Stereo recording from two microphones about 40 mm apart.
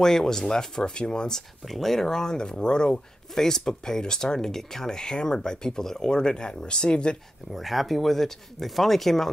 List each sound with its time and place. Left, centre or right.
0.0 s speech: centre
1.6 s speech: centre; by 7.2 s left
7.5 s speech: centre